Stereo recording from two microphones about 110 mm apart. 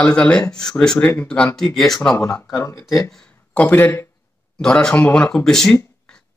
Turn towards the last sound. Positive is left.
turn(degrees=5)  # may be behind; listen again after turning